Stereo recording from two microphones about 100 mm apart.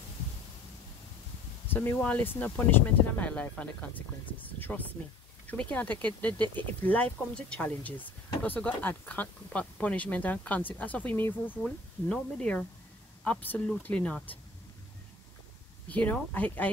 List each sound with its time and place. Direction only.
1.7 s speech: 20° left (ahead or behind)
11.6 s speech: 10° left (ahead or behind)
15.9 s speech: 15° left (ahead or behind)